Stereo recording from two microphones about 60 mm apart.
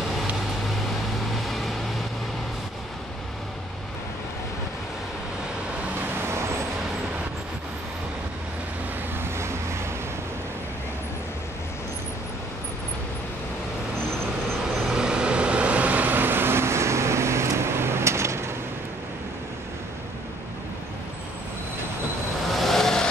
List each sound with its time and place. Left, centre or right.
9.2 s vehicle: right
14.9 s vehicle: centre; by 18.4 s right
22.5 s vehicle: centre